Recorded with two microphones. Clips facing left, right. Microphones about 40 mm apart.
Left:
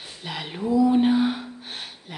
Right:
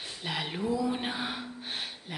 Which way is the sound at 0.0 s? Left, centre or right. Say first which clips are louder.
Left 1 dB; centre.